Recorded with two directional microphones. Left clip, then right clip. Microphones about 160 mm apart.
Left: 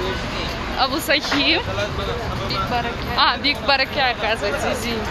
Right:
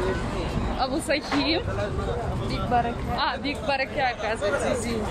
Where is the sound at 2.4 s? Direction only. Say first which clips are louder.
Left 2 dB; 75° right (ahead or behind).